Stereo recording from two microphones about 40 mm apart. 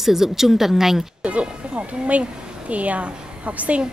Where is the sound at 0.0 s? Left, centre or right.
Centre.